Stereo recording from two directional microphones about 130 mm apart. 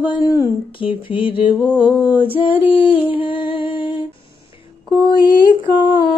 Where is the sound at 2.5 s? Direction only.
15° right (ahead or behind).